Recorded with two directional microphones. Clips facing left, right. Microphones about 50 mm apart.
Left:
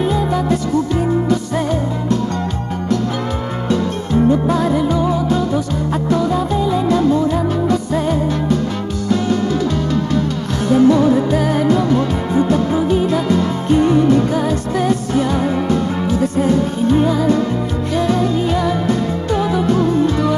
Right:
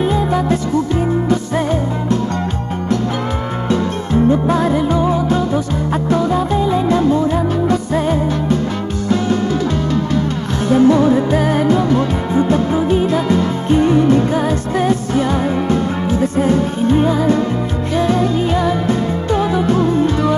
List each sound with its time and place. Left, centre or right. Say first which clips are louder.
0.1 s music: right 1 dB; right
4.1 s music: right 1 dB; right
10.7 s music of asia: even; right
12.4 s music: right 1 dB; right